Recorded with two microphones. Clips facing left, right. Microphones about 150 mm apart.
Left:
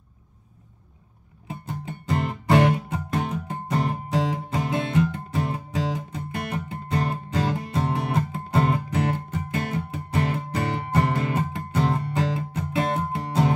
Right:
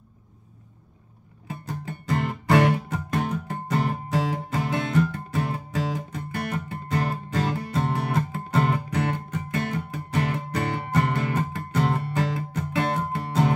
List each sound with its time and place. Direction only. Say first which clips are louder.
1.5 s music: even; 25° left (ahead or behind)